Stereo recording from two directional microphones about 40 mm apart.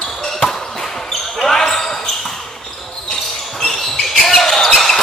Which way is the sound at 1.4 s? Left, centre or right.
Centre.